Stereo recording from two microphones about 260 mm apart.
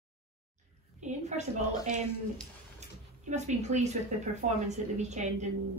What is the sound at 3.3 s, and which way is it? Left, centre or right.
A woman's voice, right.